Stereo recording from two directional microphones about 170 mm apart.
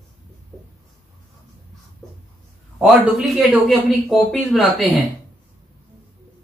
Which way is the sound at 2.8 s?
5° right (ahead or behind).